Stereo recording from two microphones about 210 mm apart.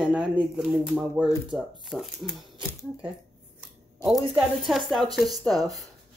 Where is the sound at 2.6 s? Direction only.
15° left (ahead or behind).